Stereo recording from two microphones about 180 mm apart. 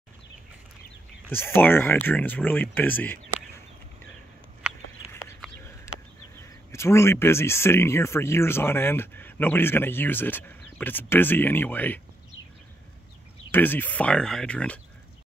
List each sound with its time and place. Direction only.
1.3 s speech: 10° left (ahead or behind)
6.7 s speech: 15° left (ahead or behind)
13.5 s speech: 10° left (ahead or behind)